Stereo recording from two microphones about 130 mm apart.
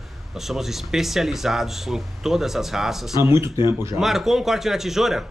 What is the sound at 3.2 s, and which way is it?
Speech, 20° right (ahead or behind).